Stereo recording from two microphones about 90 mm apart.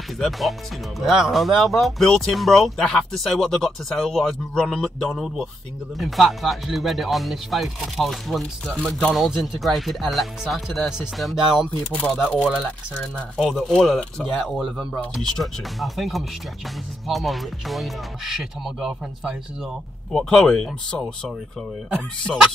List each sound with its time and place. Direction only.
0.2 s speech: centre (ahead or behind)
11.9 s speech: 15° left (ahead or behind)
13.4 s speech: centre (ahead or behind)
20.1 s speech: 5° left (ahead or behind)